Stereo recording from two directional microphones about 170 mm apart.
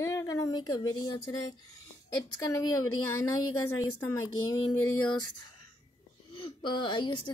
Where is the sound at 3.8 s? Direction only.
25° left (ahead or behind).